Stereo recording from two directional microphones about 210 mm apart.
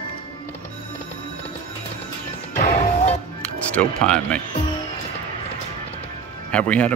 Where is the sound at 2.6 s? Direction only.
35° left (ahead or behind).